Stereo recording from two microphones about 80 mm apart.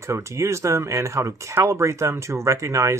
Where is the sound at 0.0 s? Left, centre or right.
Right.